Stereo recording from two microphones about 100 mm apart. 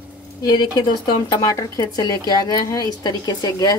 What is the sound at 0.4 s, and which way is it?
Speech, 45° left (ahead or behind).